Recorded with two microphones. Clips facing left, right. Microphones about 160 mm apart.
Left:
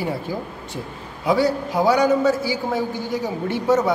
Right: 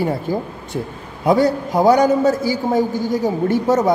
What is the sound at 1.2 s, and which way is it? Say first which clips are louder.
A man's voice: right 4 dB; 50° right (ahead or behind).